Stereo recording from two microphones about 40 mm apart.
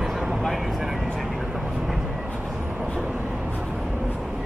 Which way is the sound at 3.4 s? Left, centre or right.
Right.